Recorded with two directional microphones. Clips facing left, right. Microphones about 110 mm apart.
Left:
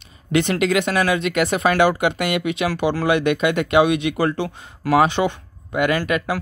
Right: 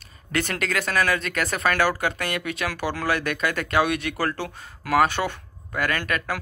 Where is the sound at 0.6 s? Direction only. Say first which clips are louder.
Left 6 dB; 10° left (ahead or behind).